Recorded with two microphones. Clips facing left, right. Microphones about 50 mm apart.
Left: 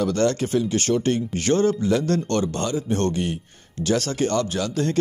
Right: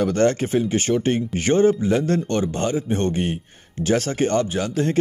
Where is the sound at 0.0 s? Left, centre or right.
Right.